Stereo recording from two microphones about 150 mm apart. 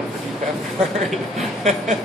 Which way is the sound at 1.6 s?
50° right (ahead or behind).